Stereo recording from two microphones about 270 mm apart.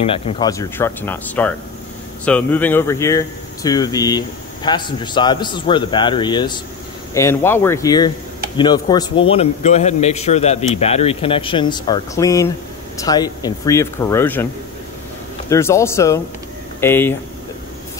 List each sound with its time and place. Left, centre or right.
0.0 s a man's voice: left
15.5 s speech: centre